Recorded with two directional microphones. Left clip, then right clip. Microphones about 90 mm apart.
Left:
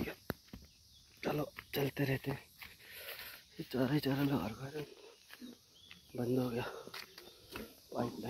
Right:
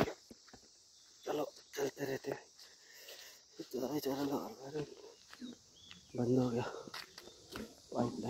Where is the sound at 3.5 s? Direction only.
15° right (ahead or behind).